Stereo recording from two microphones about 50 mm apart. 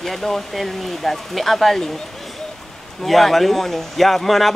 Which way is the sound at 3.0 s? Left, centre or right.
Centre.